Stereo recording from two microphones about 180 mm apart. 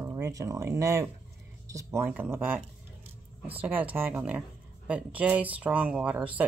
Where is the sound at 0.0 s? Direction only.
20° right (ahead or behind).